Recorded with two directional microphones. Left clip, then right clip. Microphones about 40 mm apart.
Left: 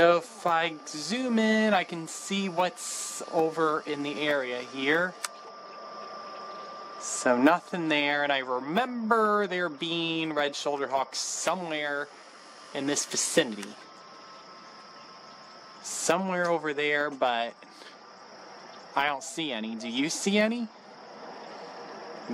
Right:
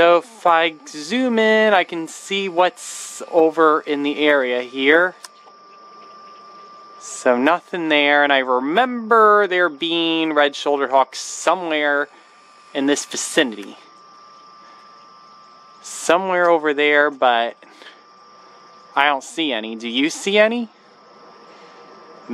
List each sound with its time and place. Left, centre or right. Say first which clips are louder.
0.0 s speech: right 9 dB; right
7.0 s speech: right 7 dB; right
15.8 s speech: right 10 dB; right
18.9 s speech: right 11 dB; right